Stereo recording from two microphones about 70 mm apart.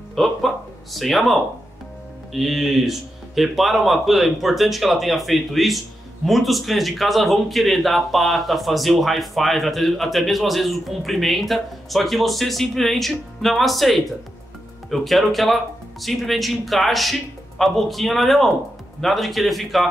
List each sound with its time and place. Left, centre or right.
0.1 s speech: centre